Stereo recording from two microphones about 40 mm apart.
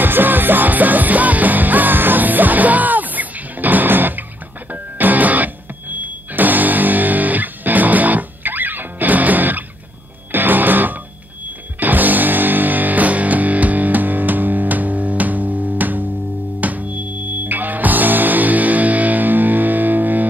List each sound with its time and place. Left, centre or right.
0.0 s music: right